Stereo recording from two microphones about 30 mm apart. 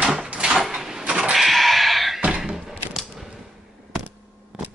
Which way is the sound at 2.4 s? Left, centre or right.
Centre.